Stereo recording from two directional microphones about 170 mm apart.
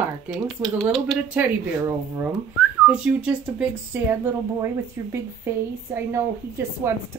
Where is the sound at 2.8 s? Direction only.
5° right (ahead or behind).